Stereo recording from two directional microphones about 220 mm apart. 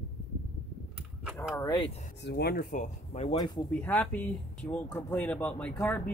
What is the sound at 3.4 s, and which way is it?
Speech, 10° left (ahead or behind).